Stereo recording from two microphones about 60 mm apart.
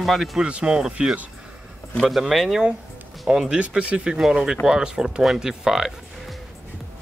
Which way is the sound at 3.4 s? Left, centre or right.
Right.